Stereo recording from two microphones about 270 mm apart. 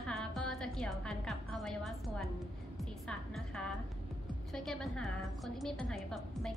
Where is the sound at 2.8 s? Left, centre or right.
Centre.